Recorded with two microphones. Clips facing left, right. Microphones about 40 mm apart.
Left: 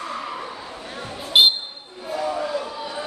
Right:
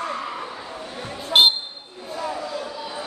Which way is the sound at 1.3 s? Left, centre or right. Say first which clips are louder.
Even; centre.